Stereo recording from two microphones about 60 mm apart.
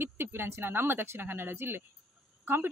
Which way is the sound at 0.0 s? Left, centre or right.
Right.